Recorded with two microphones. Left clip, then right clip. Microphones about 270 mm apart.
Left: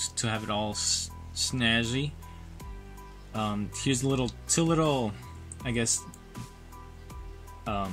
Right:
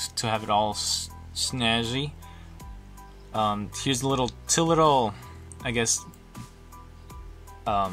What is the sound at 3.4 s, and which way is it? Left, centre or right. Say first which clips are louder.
Speech: right 2 dB; right.